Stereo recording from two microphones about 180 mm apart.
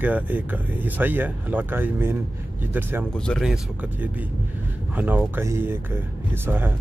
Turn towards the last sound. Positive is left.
turn(degrees=-10)  # may be behind; listen again after turning